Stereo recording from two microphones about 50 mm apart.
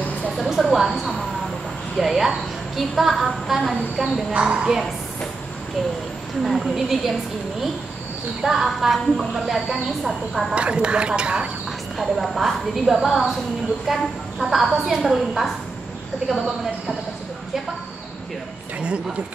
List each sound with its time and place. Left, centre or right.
0.4 s a sound: centre
2.0 s a woman's voice: centre
4.3 s speech: centre
6.4 s a woman's voice: centre
8.5 s a woman's voice: centre
10.5 s speech: right
12.0 s a woman's voice: centre